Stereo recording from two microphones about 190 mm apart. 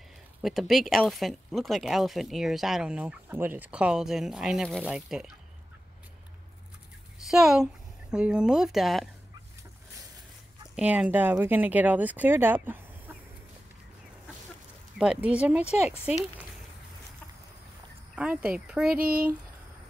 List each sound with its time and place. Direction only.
0.4 s speech: centre (ahead or behind)
7.2 s speech: centre (ahead or behind)
10.8 s speech: 5° right (ahead or behind)
15.0 s speech: 5° right (ahead or behind)
15.6 s speech: 35° left (ahead or behind)
18.1 s speech: 5° right (ahead or behind)